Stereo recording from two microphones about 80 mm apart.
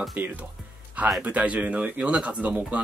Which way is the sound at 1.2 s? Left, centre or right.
Centre.